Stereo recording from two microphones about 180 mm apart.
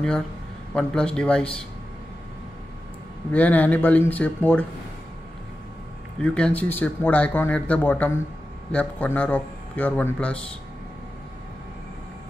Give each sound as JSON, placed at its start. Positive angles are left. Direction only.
{"t": 0.7, "sound": "a man's voice", "side_deg": 5}
{"t": 3.3, "sound": "speech", "side_deg": 10}
{"t": 6.2, "sound": "speech", "side_deg": 5}